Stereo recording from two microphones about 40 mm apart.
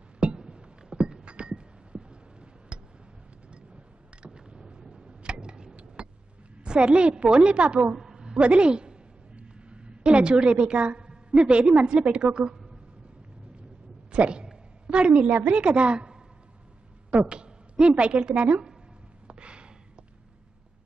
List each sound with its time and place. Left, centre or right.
0.2 s a sound: right
3.5 s tick: right
6.6 s a woman's voice: right
7.8 s a sound: centre
11.1 s a woman's voice: right
14.1 s a woman's voice: right
19.2 s gasp: right